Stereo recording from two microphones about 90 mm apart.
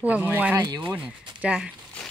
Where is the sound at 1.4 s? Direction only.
10° right (ahead or behind).